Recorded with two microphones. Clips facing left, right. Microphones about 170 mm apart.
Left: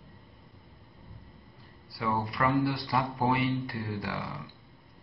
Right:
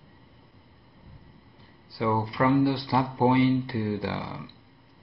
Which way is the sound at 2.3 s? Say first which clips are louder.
Right 6 dB; 20° right (ahead or behind).